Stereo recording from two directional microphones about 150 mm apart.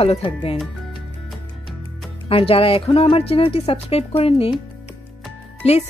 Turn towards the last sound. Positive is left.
turn(degrees=45)  # may be behind; listen again after turning